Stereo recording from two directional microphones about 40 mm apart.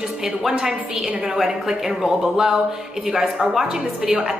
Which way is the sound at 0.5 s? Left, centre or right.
Centre.